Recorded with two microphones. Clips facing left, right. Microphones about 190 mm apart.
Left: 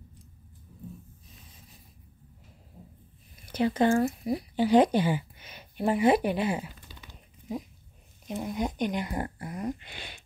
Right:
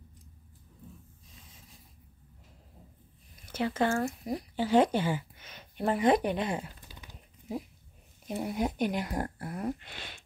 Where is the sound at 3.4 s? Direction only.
15° left (ahead or behind).